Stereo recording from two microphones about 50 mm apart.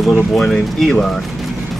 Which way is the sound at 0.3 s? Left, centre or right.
Centre.